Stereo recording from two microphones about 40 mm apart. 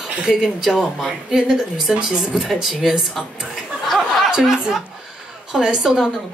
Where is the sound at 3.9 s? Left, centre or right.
Centre.